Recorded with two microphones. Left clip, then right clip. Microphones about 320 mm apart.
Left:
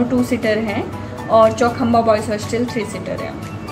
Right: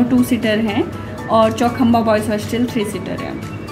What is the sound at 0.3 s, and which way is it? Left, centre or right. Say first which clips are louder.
Speech: even; centre.